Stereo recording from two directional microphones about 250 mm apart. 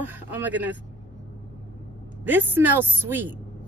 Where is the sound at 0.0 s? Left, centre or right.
Centre.